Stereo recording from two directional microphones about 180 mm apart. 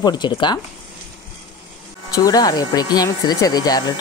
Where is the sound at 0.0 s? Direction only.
25° left (ahead or behind).